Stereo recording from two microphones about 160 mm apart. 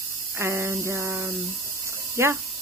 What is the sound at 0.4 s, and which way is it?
Speech, 15° right (ahead or behind).